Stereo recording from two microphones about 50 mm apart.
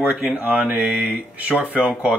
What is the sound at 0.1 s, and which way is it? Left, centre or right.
Speech, right.